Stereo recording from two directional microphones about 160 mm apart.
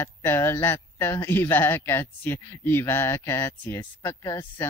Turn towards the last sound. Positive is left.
turn(degrees=15)  # may be behind; listen again after turning